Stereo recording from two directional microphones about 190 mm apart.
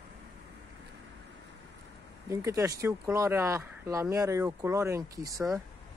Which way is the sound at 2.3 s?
15° right (ahead or behind).